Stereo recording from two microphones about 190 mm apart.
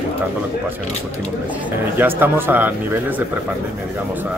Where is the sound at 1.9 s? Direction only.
10° right (ahead or behind).